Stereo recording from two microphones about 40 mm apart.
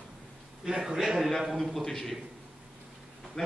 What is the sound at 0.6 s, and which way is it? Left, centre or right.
A man's voice, centre.